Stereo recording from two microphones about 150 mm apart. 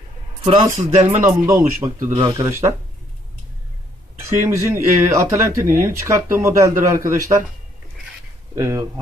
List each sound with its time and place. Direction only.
0.7 s speech: 50° right (ahead or behind)
1.2 s speech: 15° right (ahead or behind)
2.1 s speech: 30° right (ahead or behind)
2.4 s speech: 20° right (ahead or behind)
4.2 s speech: 20° right (ahead or behind)
8.5 s speech: 20° right (ahead or behind)